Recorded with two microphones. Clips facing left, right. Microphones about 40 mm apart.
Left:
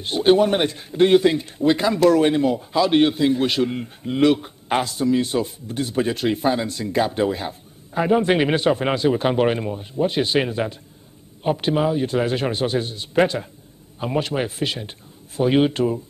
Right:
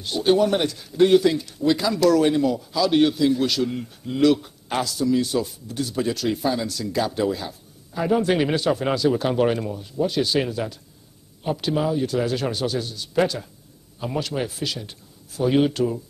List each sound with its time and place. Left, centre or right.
0.0 s a man's voice: left